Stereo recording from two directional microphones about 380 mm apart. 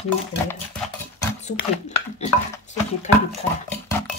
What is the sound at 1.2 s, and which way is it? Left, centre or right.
Speech, centre.